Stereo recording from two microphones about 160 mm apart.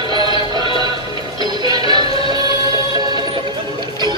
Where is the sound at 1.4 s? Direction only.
25° right (ahead or behind).